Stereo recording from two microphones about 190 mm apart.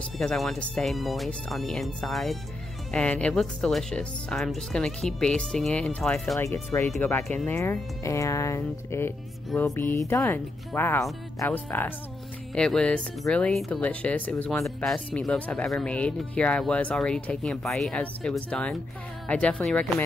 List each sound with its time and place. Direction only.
0.2 s speech: 5° left (ahead or behind)
6.3 s speech: 15° left (ahead or behind)